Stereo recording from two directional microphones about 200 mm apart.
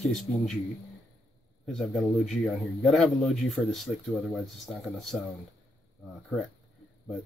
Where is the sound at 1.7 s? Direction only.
Centre (ahead or behind).